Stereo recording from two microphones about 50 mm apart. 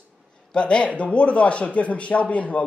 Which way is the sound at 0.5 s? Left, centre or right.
Left.